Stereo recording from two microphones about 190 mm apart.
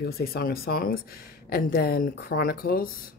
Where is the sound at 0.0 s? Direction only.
50° left (ahead or behind).